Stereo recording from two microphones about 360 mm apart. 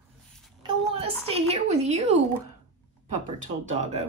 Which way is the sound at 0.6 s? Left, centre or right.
Centre.